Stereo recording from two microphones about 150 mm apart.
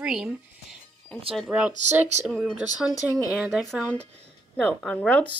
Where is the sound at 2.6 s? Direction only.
10° right (ahead or behind).